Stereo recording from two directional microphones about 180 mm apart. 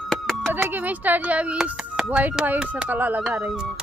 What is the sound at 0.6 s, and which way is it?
A child's voice, 10° right (ahead or behind).